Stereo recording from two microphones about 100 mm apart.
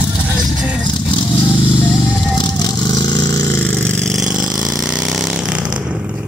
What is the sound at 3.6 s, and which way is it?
Vehicle, 15° left (ahead or behind).